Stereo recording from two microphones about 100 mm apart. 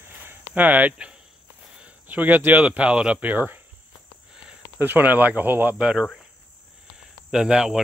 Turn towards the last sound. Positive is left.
turn(degrees=-5)  # may be behind; listen again after turning